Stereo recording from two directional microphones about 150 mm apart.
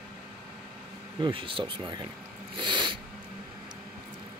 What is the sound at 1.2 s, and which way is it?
Speech, 35° right (ahead or behind).